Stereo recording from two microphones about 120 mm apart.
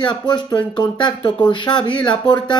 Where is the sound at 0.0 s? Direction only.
40° left (ahead or behind).